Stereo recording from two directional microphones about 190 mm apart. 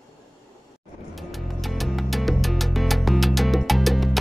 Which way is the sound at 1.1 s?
Centre (ahead or behind).